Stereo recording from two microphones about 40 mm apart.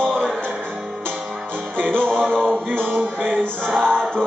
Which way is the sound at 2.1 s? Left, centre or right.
Centre.